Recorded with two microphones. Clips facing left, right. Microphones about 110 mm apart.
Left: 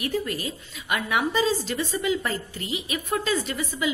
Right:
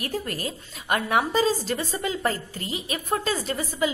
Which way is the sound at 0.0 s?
40° right (ahead or behind).